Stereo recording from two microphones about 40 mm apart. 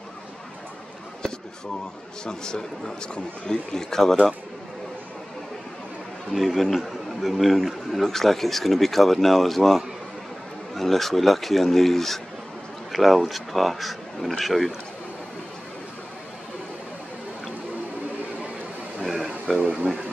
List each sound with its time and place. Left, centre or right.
2.2 s a man's voice: centre
6.3 s a man's voice: centre
19.0 s a sound: centre